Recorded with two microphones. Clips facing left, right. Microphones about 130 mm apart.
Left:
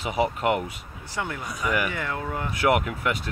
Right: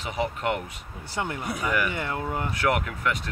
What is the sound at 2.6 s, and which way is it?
Speech, 10° left (ahead or behind).